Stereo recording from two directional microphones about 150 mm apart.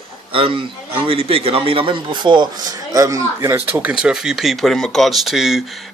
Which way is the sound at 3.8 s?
10° right (ahead or behind).